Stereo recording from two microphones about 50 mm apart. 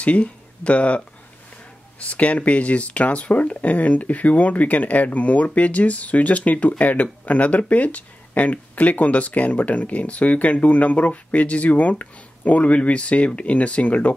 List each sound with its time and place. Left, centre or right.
0.0 s speech: left